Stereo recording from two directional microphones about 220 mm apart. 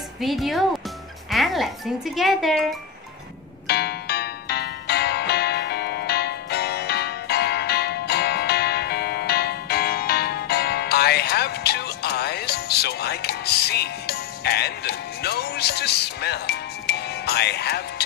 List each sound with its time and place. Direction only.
0.2 s speech: centre (ahead or behind)
3.6 s music: 45° left (ahead or behind)